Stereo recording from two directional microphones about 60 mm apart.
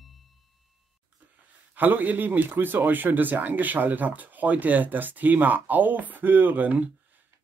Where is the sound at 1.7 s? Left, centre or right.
Right.